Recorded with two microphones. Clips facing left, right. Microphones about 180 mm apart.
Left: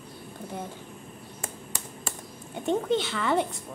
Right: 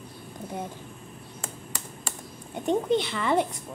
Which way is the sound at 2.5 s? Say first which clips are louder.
Right 1 dB; centre (ahead or behind).